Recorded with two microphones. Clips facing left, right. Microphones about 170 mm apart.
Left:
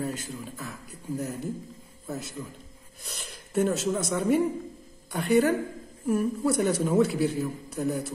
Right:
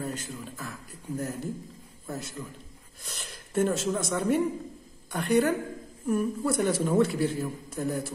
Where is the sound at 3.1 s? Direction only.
Centre (ahead or behind).